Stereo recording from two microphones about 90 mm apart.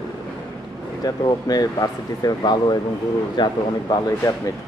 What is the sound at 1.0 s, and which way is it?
Speech, 45° left (ahead or behind).